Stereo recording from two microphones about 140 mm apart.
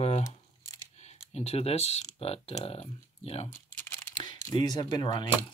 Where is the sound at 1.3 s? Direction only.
45° left (ahead or behind).